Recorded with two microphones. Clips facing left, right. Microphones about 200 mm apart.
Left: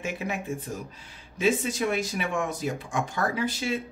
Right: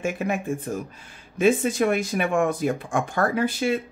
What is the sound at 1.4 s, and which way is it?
Speech, 55° right (ahead or behind).